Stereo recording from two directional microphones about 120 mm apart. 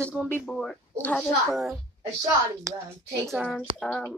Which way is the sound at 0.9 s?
15° left (ahead or behind).